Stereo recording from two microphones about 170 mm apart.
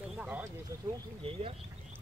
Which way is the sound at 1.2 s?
35° right (ahead or behind).